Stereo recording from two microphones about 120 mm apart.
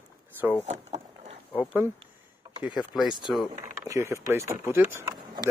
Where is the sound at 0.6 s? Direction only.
70° right (ahead or behind).